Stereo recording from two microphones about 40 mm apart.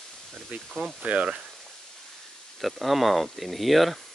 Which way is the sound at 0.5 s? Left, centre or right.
Right.